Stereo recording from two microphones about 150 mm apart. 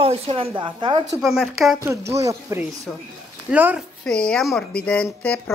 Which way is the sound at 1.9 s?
20° right (ahead or behind).